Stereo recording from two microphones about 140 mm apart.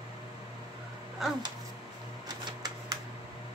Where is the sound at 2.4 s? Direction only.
30° right (ahead or behind).